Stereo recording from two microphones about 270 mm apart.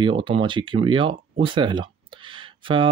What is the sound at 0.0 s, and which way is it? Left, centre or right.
Speech, centre.